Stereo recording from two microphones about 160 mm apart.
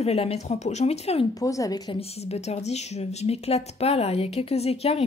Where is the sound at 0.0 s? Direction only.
40° left (ahead or behind).